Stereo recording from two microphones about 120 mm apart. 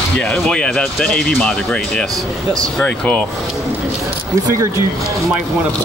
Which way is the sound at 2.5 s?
10° left (ahead or behind).